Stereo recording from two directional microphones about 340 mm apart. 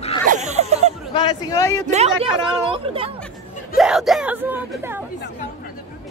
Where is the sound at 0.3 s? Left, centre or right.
Centre.